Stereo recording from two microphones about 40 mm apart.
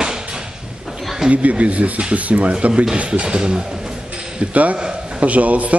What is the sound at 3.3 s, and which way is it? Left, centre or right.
Speech, right.